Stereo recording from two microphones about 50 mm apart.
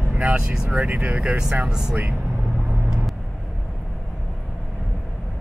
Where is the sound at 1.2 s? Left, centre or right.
Centre.